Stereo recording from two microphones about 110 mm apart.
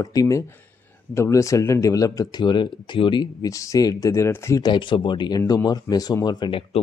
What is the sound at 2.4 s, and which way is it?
Speech, 45° left (ahead or behind).